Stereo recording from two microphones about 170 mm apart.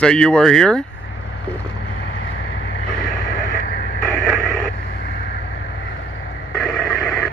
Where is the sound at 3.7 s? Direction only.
70° left (ahead or behind).